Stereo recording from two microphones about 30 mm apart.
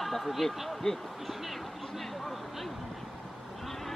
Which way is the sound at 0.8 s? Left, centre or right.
Left.